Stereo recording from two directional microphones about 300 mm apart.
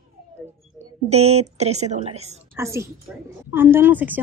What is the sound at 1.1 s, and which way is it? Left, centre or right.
A woman's voice, right.